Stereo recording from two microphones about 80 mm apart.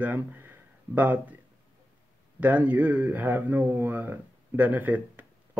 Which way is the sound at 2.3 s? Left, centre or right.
Centre.